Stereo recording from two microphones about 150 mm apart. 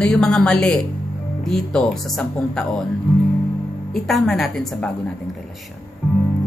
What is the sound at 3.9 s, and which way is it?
A woman's voice, centre (ahead or behind).